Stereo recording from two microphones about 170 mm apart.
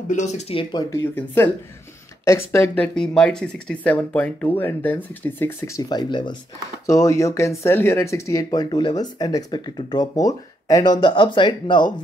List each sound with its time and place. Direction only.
0.1 s speech: 45° left (ahead or behind)
0.9 s speech: 10° left (ahead or behind); by 11.9 s 25° left (ahead or behind)